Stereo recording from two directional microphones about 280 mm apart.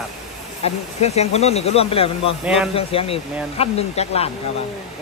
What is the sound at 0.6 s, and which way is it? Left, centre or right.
Speech, left.